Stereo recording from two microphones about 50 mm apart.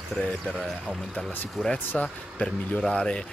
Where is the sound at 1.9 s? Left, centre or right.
Centre.